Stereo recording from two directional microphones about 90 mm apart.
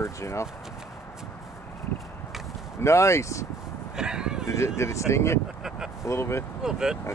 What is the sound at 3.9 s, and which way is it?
Speech, 10° right (ahead or behind).